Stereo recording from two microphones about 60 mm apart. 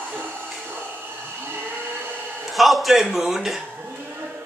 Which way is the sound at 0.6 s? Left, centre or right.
Right.